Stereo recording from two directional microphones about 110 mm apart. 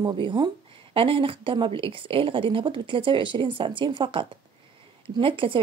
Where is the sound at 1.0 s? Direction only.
55° right (ahead or behind).